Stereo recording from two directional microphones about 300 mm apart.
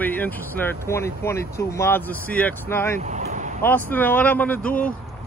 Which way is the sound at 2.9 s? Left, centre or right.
Right.